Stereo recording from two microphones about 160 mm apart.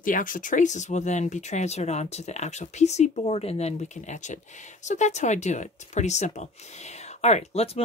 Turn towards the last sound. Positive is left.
turn(degrees=40)  # may be behind; listen again after turning